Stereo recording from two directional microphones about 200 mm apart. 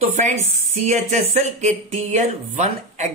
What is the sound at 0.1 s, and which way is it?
Speech, 35° right (ahead or behind).